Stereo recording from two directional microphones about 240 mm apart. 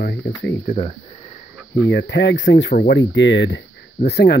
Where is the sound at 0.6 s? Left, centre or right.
Left.